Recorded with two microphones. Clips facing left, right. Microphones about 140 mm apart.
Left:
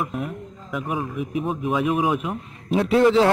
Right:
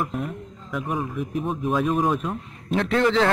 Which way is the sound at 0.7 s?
5° left (ahead or behind).